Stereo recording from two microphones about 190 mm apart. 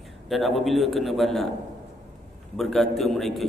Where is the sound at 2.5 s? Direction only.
Centre (ahead or behind).